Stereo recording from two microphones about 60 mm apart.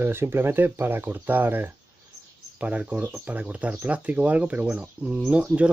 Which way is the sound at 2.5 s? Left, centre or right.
Right.